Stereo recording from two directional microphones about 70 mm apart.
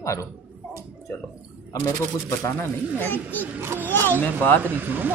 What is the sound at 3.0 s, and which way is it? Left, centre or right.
Speech, left.